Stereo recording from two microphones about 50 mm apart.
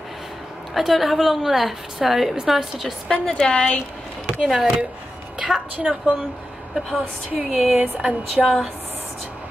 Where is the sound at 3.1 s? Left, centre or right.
Centre.